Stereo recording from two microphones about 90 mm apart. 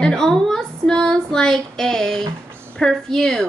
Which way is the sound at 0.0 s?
5° left (ahead or behind).